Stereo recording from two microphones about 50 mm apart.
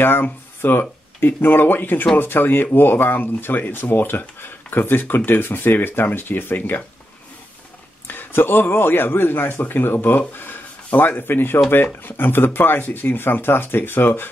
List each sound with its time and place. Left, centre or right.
0.0 s speech: left
8.1 s speech: left